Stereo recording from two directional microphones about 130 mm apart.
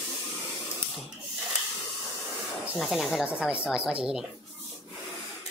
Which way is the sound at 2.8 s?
Centre (ahead or behind).